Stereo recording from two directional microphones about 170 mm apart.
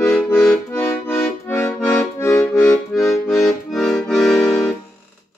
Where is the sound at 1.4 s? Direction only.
15° left (ahead or behind).